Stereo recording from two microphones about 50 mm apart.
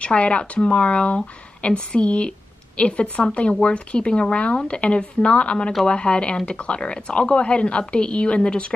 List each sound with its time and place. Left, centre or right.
0.0 s speech: left